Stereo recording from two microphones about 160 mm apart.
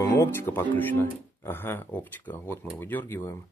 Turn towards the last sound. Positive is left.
turn(degrees=10)  # may be behind; listen again after turning